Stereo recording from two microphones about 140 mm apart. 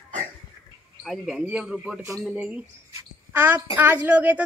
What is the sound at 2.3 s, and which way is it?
A woman's voice, 5° right (ahead or behind).